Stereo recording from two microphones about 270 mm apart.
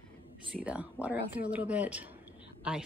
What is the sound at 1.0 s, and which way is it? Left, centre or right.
Speech, centre.